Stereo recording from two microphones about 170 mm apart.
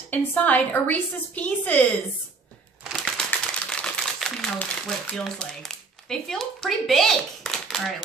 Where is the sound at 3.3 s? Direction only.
5° left (ahead or behind).